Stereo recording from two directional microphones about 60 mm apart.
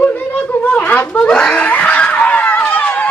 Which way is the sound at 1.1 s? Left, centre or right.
Centre.